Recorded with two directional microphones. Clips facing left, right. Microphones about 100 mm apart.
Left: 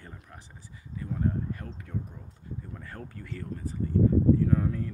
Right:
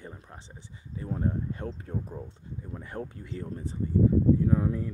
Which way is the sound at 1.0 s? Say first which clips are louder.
Even; 30° right (ahead or behind).